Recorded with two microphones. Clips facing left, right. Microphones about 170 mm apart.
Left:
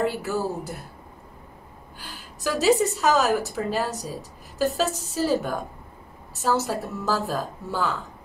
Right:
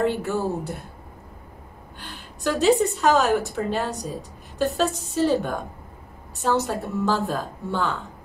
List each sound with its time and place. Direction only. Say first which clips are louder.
0.0 s a woman's voice: right 2 dB; 5° left (ahead or behind)
2.0 s a woman's voice: right 2 dB; 5° left (ahead or behind)